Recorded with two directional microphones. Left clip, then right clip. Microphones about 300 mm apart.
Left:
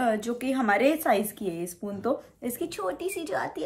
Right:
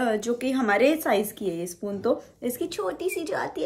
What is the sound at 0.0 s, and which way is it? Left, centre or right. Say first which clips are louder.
A woman's voice: right 2 dB; centre.